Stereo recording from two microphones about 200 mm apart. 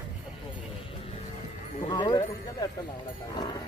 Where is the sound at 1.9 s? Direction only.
20° left (ahead or behind).